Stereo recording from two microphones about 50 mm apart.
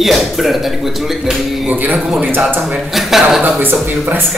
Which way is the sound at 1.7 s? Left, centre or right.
Right.